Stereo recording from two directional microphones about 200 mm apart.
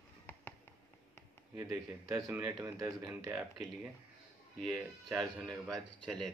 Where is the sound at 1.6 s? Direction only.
15° right (ahead or behind).